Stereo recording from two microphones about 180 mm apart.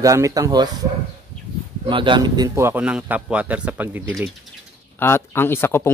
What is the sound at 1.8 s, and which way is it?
A man's voice, 30° right (ahead or behind).